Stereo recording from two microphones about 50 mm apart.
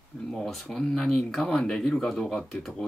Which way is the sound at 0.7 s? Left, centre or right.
Centre.